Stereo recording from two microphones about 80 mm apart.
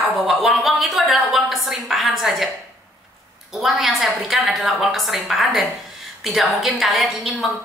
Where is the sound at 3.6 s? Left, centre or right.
Centre.